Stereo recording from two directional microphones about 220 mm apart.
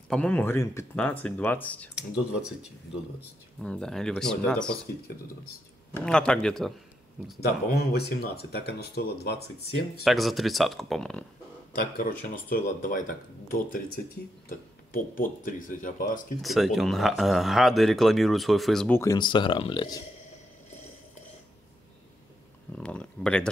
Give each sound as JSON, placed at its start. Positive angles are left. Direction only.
{"t": 0.1, "sound": "speech", "side_deg": 5}
{"t": 3.6, "sound": "speech", "side_deg": 5}
{"t": 5.9, "sound": "speech", "side_deg": 5}
{"t": 7.4, "sound": "speech", "side_deg": 45}
{"t": 10.0, "sound": "speech", "side_deg": 0}
{"t": 12.0, "sound": "speech", "side_deg": 35}
{"t": 14.9, "sound": "speech", "side_deg": 40}
{"t": 16.3, "sound": "speech", "side_deg": 0}
{"t": 22.8, "sound": "speech", "side_deg": 5}